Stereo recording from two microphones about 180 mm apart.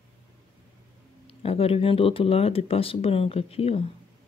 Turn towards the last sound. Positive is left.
turn(degrees=35)  # may be behind; listen again after turning